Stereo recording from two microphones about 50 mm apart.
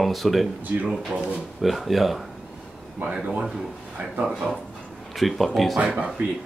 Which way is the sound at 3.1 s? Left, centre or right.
Centre.